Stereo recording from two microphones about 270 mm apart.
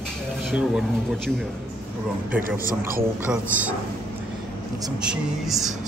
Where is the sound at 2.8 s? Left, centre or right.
Right.